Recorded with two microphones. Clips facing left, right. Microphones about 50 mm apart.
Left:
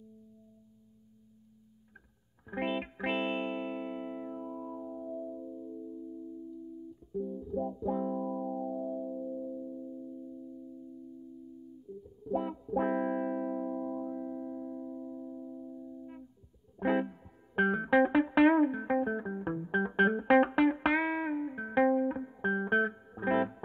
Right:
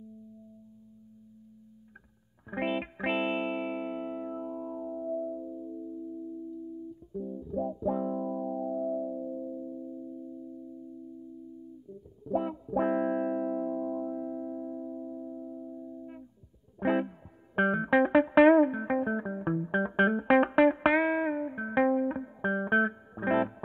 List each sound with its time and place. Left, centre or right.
2.5 s music: centre
7.1 s music: centre
12.3 s music: centre